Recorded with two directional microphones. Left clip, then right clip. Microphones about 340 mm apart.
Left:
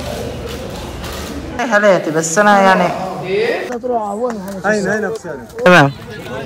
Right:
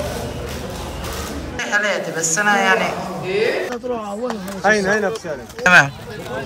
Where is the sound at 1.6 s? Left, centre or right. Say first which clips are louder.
Left 8 dB; centre.